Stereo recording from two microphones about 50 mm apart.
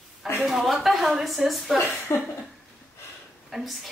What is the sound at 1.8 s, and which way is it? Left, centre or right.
Speech, left.